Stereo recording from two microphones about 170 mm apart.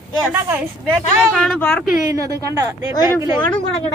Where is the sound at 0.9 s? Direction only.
5° left (ahead or behind).